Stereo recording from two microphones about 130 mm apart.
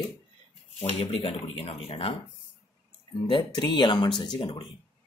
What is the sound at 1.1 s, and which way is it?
Speech, 45° left (ahead or behind).